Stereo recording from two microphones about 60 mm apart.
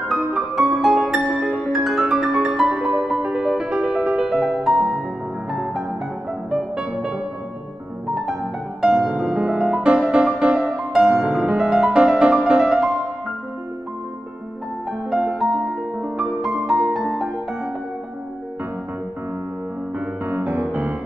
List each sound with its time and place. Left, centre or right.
0.3 s music: centre
8.8 s music: centre
14.9 s music: centre
20.2 s music: right